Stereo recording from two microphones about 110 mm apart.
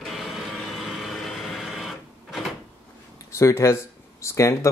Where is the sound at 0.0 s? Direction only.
Centre (ahead or behind).